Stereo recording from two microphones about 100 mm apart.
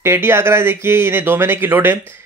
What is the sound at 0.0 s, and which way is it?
Speech, 25° right (ahead or behind).